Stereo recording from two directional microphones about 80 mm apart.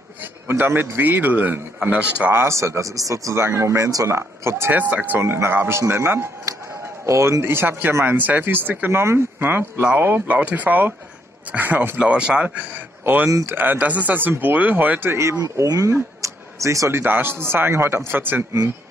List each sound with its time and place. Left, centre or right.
0.5 s speech: right
2.3 s a man's voice: right
4.7 s a man's voice: right
9.8 s speech: centre
12.0 s speech: centre
15.1 s speech: right
17.0 s speech: right